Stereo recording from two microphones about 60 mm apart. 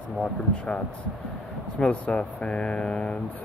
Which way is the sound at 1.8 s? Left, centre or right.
Centre.